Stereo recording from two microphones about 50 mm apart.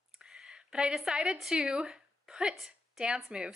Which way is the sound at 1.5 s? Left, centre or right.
Centre.